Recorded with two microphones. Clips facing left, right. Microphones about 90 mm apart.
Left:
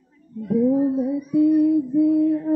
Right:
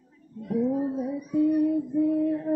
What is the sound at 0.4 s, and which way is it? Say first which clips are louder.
Speech: left 7 dB; centre (ahead or behind).